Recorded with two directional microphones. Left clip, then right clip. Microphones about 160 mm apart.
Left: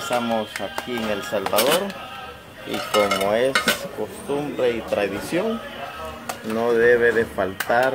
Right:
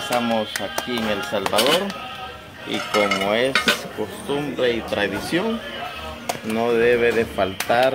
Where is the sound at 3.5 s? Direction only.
40° left (ahead or behind).